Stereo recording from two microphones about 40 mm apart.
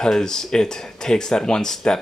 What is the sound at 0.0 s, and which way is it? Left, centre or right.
A man's voice, centre.